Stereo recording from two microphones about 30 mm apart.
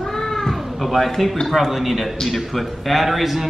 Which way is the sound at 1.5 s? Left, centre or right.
Centre.